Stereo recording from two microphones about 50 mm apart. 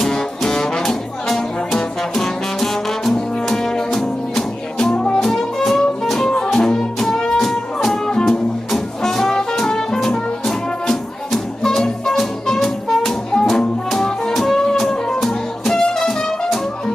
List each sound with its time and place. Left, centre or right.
0.0 s music: centre